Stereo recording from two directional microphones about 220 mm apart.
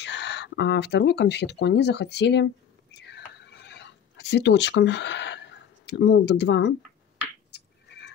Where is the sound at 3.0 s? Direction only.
50° left (ahead or behind).